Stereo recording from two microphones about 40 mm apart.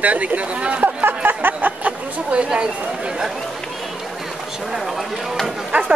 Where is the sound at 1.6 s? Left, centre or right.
Right.